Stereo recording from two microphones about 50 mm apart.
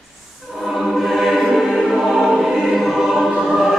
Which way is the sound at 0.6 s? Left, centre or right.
Centre.